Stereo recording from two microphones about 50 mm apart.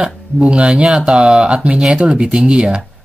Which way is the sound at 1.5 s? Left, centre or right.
Right.